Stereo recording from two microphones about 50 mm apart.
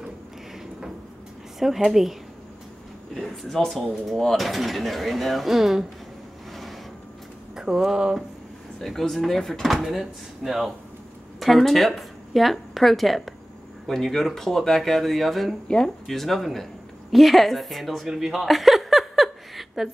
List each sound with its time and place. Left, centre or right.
1.6 s speech: centre
3.2 s speech: centre
7.5 s speech: centre
8.7 s speech: centre
18.0 s speech: centre
18.5 s a sound: centre